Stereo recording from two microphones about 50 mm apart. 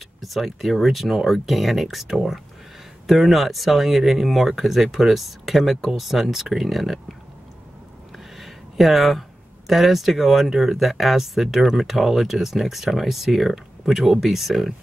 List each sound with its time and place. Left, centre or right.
0.2 s speech: centre
8.4 s a sound: centre
9.7 s speech: centre